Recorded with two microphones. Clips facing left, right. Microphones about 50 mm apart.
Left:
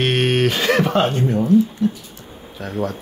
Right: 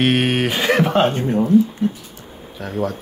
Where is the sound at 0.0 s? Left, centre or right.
Centre; by 2.0 s right.